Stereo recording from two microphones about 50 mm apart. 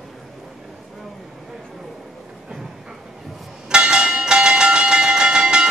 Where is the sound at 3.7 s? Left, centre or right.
Centre.